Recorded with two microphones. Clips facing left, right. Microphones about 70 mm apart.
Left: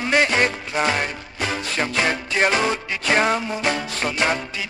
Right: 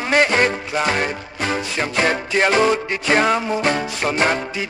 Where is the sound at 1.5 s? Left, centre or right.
Right.